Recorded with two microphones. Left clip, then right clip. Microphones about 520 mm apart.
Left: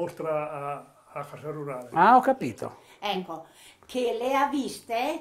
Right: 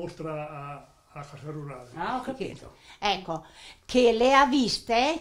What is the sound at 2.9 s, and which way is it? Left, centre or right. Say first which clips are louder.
A woman's voice: right 4 dB; right.